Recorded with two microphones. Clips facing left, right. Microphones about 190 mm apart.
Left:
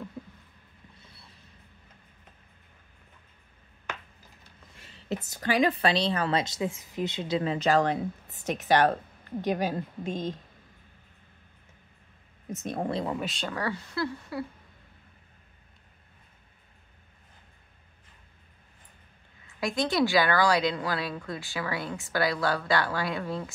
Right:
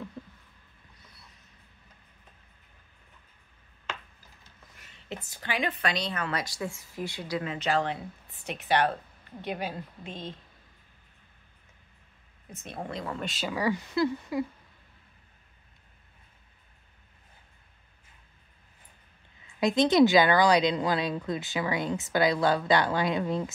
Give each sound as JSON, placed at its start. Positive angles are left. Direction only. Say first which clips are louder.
{"t": 0.9, "sound": "a sound", "louder": "left 2 dB", "side_deg": 30}
{"t": 4.7, "sound": "a woman's voice", "louder": "left 6 dB", "side_deg": 30}
{"t": 7.5, "sound": "a woman's voice", "louder": "left 4 dB", "side_deg": 40}
{"t": 12.4, "sound": "a woman's voice", "louder": "left 7 dB", "side_deg": 40}
{"t": 13.2, "sound": "speech", "louder": "right 2 dB", "side_deg": -5}
{"t": 19.6, "sound": "speech", "louder": "right 6 dB", "side_deg": -20}